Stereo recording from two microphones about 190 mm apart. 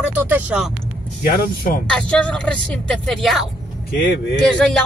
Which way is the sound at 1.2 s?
50° left (ahead or behind).